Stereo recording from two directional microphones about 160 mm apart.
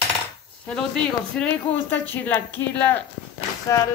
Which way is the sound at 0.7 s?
5° left (ahead or behind).